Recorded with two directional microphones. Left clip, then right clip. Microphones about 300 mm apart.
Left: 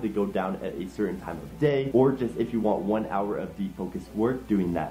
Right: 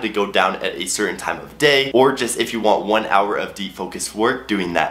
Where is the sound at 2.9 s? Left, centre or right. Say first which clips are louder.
Right 11 dB; centre.